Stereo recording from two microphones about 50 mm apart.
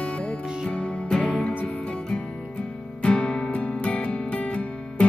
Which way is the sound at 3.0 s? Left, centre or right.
Centre.